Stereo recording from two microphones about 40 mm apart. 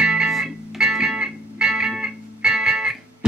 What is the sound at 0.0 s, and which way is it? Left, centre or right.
Music, right.